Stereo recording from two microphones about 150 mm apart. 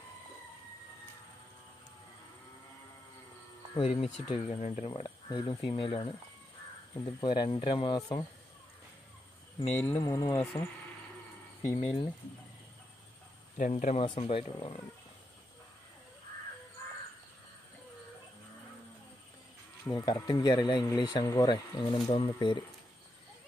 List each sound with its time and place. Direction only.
3.7 s speech: 40° left (ahead or behind)
9.8 s speech: 15° left (ahead or behind)
11.7 s speech: 40° left (ahead or behind)
13.6 s speech: 60° left (ahead or behind)
13.9 s speech: 40° left (ahead or behind)
20.0 s speech: 20° left (ahead or behind)